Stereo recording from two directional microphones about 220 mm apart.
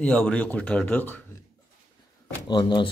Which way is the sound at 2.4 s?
20° left (ahead or behind).